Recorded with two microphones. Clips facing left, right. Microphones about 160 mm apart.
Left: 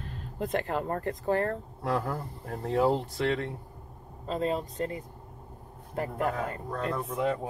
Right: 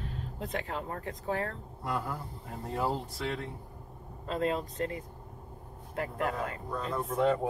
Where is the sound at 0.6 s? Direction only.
55° left (ahead or behind).